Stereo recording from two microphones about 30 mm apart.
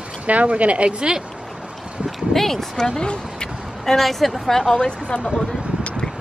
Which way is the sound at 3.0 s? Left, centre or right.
Left.